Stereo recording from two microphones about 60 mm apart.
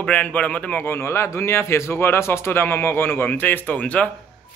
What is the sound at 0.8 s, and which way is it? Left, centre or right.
Speech, left.